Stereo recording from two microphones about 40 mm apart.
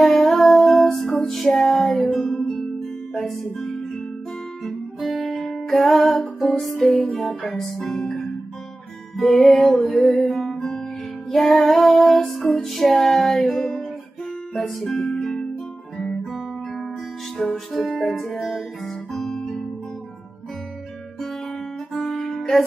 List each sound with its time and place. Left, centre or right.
0.0 s music: centre
5.1 s music: centre
15.1 s music: centre
17.4 s music: centre
17.7 s music: centre
19.1 s guitar: centre
22.0 s music: centre